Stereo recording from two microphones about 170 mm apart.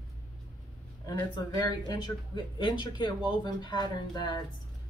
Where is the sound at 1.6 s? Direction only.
25° left (ahead or behind).